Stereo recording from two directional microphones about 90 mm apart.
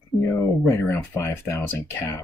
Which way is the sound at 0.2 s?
25° left (ahead or behind).